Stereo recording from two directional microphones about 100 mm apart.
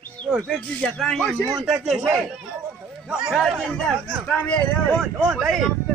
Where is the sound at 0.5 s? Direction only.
5° left (ahead or behind).